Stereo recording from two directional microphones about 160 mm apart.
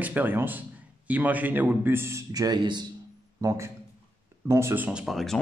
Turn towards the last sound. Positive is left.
turn(degrees=0)  # may be behind; listen again after turning